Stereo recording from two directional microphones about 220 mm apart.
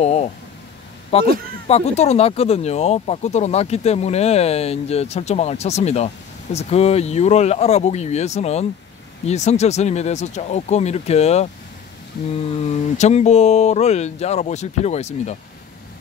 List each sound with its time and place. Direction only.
0.0 s speech: 30° left (ahead or behind)
12.4 s speech: 30° left (ahead or behind)